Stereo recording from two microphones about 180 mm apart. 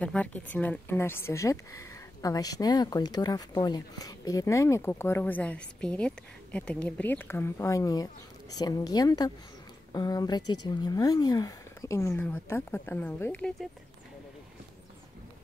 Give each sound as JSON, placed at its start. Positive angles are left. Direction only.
{"t": 0.0, "sound": "speech", "side_deg": 5}